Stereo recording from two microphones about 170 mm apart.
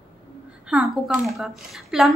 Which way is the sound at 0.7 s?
5° right (ahead or behind).